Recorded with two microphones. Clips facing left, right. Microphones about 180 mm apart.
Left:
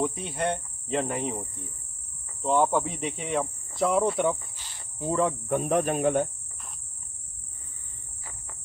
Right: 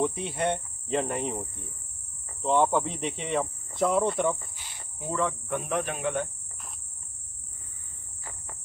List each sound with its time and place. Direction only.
0.0 s cricket: centre (ahead or behind)
4.6 s insect: 10° right (ahead or behind)
5.0 s speech: 35° left (ahead or behind)